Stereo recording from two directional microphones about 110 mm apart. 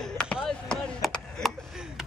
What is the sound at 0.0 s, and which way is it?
Chop, 5° left (ahead or behind).